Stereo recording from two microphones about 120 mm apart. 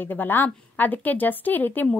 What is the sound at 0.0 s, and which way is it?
A woman's voice, 15° left (ahead or behind).